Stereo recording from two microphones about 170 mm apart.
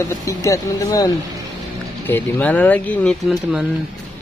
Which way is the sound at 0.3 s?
20° left (ahead or behind).